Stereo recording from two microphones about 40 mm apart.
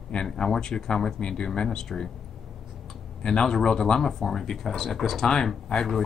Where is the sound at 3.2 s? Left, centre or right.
Centre.